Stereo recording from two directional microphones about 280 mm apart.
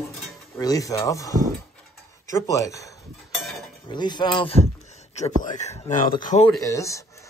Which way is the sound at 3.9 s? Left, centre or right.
Centre.